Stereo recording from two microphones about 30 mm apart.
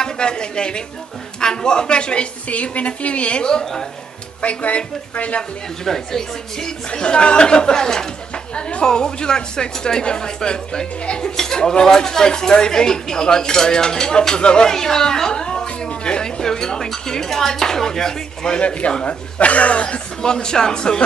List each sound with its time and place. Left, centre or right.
0.0 s speech: left
2.5 s speech: left
5.9 s dishes: centre
6.9 s speech: left
14.7 s a sound: centre
16.4 s dishes: left
19.0 s speech: left
20.2 s speech: left